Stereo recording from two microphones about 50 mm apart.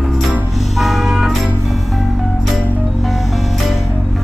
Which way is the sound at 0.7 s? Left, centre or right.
Centre.